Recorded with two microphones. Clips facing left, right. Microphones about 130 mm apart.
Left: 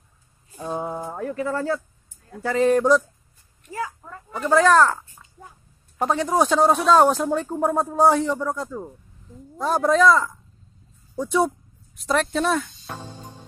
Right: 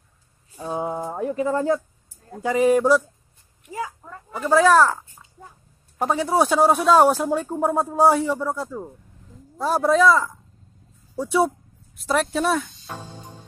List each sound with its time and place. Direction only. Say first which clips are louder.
0.6 s a man's voice: right 2 dB; 15° right (ahead or behind)
3.6 s a sound: even; 10° right (ahead or behind)
4.4 s a man's voice: right 1 dB; 5° right (ahead or behind)